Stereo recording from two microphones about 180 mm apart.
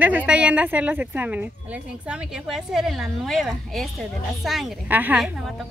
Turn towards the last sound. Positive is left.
turn(degrees=0)  # may be behind; listen again after turning